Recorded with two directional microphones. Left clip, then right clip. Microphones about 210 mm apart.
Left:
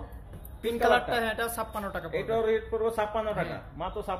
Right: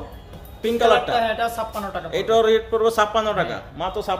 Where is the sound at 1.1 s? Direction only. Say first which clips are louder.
Right 8 dB; 50° left (ahead or behind).